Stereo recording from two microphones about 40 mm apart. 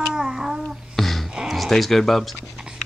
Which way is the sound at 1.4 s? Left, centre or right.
Centre.